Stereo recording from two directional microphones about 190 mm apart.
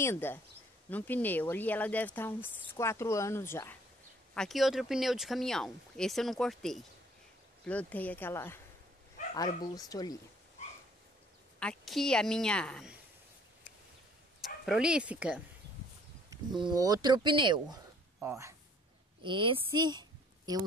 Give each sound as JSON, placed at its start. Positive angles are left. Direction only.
{"t": 0.0, "sound": "speech", "side_deg": 10}
{"t": 4.3, "sound": "speech", "side_deg": 0}
{"t": 11.6, "sound": "speech", "side_deg": 0}
{"t": 14.4, "sound": "speech", "side_deg": -5}
{"t": 16.3, "sound": "speech", "side_deg": -25}
{"t": 19.2, "sound": "a woman's voice", "side_deg": -25}